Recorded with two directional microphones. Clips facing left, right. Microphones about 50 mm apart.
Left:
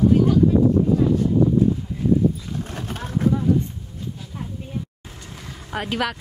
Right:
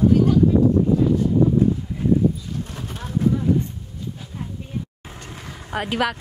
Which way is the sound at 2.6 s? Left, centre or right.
Left.